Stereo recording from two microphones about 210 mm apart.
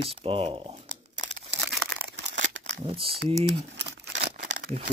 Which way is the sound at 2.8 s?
25° right (ahead or behind).